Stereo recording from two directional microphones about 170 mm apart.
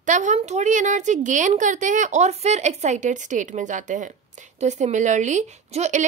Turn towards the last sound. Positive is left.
turn(degrees=-45)  # may be behind; listen again after turning